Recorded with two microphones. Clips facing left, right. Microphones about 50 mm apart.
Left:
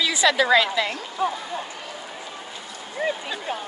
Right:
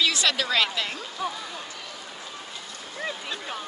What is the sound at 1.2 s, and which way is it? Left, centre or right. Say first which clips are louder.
Speech: left 7 dB; left.